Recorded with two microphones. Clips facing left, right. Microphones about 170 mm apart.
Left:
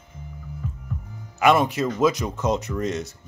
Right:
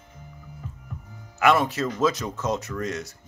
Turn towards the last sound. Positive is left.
turn(degrees=20)  # may be behind; listen again after turning